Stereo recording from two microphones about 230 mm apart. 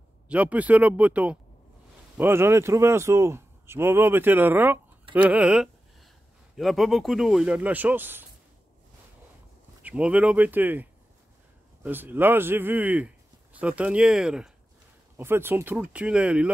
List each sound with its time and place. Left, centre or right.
0.3 s speech: centre
9.8 s speech: centre